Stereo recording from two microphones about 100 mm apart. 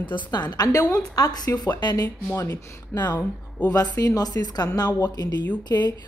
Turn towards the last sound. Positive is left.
turn(degrees=45)  # may be behind; listen again after turning